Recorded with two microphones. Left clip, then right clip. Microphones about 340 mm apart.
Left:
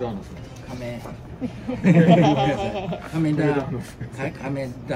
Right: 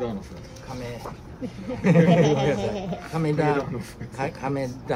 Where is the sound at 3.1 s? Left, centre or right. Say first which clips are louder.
Left 1 dB; centre.